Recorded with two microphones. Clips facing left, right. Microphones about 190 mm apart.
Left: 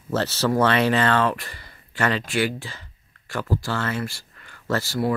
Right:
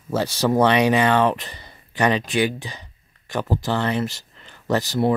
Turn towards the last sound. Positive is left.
turn(degrees=-20)  # may be behind; listen again after turning